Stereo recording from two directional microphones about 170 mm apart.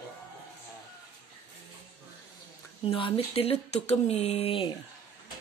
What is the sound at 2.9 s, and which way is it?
Speech, 30° left (ahead or behind).